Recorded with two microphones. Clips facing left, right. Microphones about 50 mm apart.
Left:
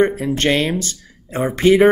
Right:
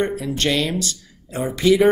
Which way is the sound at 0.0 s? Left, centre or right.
Left.